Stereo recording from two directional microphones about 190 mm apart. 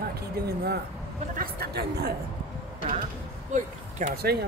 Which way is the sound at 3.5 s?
40° right (ahead or behind).